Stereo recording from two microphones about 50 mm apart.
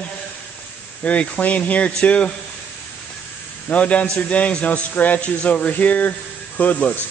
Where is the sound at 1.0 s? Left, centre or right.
Left.